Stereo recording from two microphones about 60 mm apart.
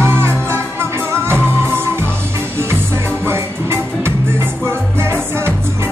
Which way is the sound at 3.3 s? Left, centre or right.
Right.